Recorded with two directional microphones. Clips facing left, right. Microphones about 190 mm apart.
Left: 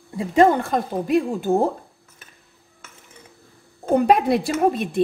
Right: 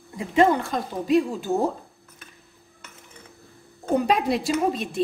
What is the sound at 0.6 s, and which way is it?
Speech, 55° left (ahead or behind).